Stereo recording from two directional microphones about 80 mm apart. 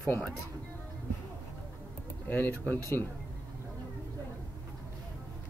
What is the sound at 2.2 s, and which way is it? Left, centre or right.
Speech, left.